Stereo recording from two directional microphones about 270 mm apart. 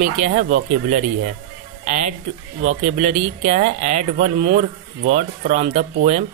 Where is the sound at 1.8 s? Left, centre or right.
Right.